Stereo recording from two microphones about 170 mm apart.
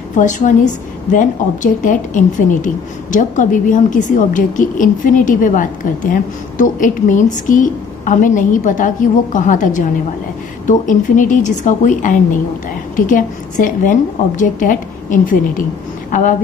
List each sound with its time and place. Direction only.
0.2 s a woman's voice: 45° left (ahead or behind)